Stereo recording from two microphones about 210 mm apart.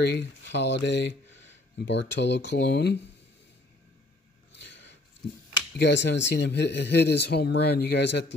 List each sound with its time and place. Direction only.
0.2 s speech: 55° left (ahead or behind)
4.5 s a sound: 55° left (ahead or behind)
5.8 s speech: 55° left (ahead or behind)